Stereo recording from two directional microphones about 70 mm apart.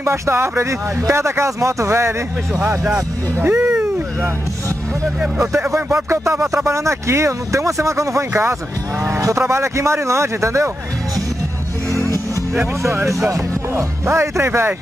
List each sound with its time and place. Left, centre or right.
0.0 s speech: right
3.3 s a sound: right
5.4 s speech: right
11.9 s music: right
12.8 s speech: right